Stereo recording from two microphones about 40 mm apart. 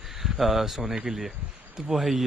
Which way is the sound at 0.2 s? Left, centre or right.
Centre.